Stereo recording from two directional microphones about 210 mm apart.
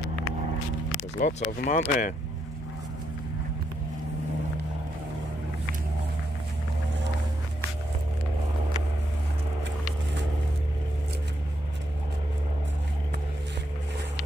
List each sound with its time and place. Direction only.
1.2 s speech: 40° left (ahead or behind)